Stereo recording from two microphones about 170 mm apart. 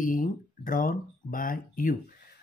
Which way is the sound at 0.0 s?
55° left (ahead or behind).